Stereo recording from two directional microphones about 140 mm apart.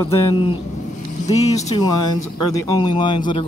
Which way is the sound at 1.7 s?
25° left (ahead or behind).